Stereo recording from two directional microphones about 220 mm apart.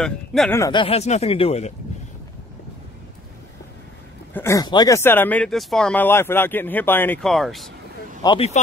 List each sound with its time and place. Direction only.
0.0 s speech: centre (ahead or behind)
0.6 s speech: 20° left (ahead or behind)
4.3 s speech: 10° left (ahead or behind)
8.2 s speech: 20° left (ahead or behind)